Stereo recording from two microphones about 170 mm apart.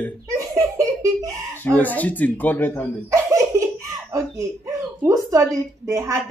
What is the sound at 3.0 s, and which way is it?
Speech, 15° right (ahead or behind).